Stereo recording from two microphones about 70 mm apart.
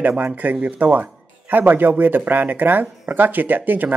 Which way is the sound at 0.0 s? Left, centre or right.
Right.